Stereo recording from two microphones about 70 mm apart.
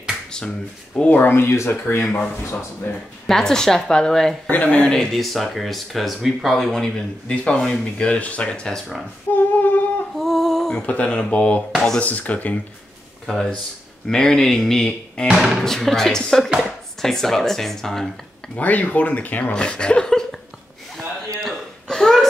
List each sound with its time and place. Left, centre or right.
0.9 s speech: centre
1.2 s speech: left
3.3 s speech: centre
4.5 s speech: left
9.3 s female singing: left
10.1 s a sound: centre
10.9 s speech: centre
13.3 s speech: centre
15.3 s speech: centre
15.6 s speech: centre
18.6 s speech: left
19.5 s a sound: centre
21.4 s a sound: centre